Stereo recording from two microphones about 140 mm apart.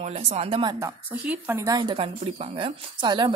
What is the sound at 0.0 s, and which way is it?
Speech, 50° right (ahead or behind).